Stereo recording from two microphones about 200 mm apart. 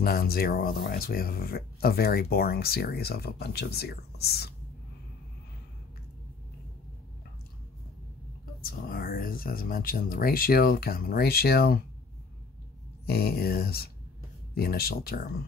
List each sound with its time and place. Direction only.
0.0 s speech: 50° left (ahead or behind)
8.5 s speech: 45° left (ahead or behind)
13.0 s speech: 50° left (ahead or behind)